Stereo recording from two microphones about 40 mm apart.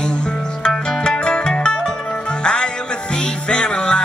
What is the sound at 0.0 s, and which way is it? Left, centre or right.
Music, left.